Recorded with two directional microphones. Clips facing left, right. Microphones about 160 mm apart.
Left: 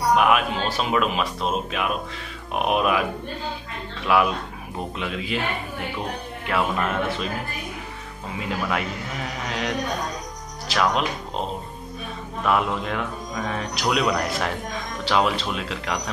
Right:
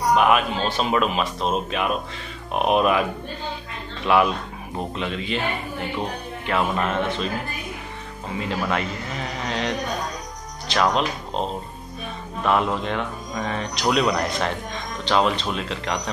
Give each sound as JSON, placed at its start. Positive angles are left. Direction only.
{"t": 0.1, "sound": "speech", "side_deg": 0}
{"t": 4.0, "sound": "speech", "side_deg": 0}
{"t": 8.4, "sound": "speech", "side_deg": 5}
{"t": 12.4, "sound": "speech", "side_deg": 5}